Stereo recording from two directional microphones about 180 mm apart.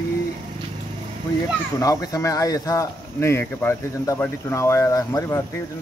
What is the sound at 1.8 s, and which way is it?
Speech, 20° left (ahead or behind).